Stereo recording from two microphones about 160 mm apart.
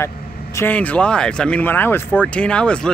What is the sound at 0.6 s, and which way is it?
A man's voice, 10° left (ahead or behind).